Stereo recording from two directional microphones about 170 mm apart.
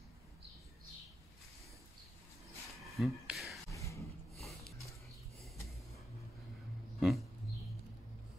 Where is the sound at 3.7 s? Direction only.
20° left (ahead or behind).